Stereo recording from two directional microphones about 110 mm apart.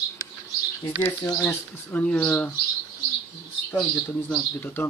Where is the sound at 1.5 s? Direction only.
15° left (ahead or behind).